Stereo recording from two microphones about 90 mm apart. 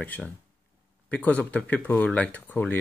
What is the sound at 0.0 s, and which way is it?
Speech, 15° left (ahead or behind).